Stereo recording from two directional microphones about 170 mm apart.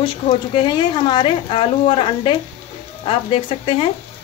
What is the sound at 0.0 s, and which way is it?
Speech, 30° left (ahead or behind).